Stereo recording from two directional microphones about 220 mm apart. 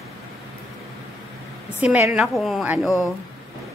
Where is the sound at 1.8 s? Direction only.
5° right (ahead or behind).